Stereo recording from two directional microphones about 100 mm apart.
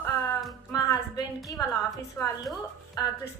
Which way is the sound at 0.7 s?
40° left (ahead or behind).